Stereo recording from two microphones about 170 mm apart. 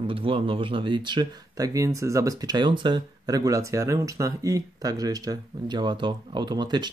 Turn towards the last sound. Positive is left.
turn(degrees=-25)  # may be behind; listen again after turning